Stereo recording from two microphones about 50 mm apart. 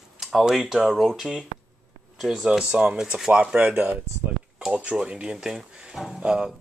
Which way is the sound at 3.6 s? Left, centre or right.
Right.